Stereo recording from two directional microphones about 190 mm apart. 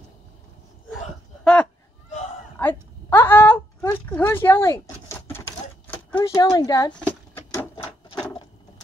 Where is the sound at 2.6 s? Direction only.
10° left (ahead or behind).